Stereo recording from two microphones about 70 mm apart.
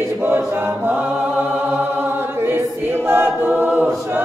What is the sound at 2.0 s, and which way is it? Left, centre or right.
Choir, right.